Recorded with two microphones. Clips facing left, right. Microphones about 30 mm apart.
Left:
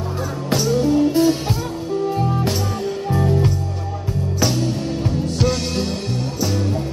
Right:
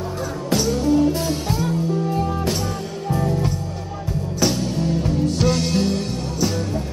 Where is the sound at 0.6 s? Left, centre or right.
Centre.